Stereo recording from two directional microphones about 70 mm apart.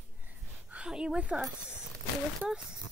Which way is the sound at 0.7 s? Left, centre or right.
Centre.